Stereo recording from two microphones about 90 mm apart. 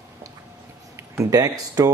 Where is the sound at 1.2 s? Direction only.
40° right (ahead or behind).